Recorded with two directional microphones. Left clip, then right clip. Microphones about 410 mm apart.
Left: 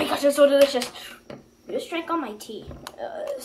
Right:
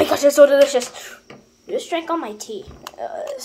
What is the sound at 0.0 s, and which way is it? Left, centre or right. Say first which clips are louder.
Speech: right 6 dB; centre.